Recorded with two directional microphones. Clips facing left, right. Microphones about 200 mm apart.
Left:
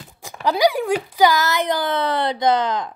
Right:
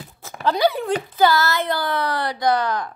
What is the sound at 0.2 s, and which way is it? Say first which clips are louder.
A woman's voice: left 1 dB; 15° left (ahead or behind).